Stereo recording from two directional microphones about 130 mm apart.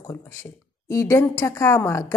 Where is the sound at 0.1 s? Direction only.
20° left (ahead or behind).